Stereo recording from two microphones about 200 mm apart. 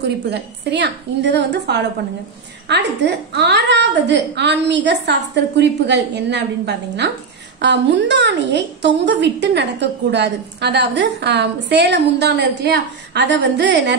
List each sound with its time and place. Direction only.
0.0 s a woman's voice: 55° right (ahead or behind)